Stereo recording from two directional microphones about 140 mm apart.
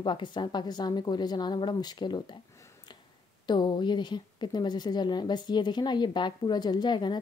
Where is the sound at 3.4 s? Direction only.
30° left (ahead or behind).